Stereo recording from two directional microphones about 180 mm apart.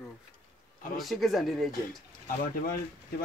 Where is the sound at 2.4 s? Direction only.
55° left (ahead or behind).